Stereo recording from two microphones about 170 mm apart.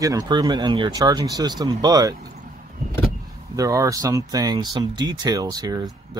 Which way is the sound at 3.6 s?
20° right (ahead or behind).